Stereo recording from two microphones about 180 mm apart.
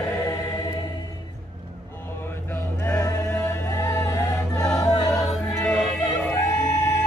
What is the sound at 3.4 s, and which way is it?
Chant, 15° left (ahead or behind).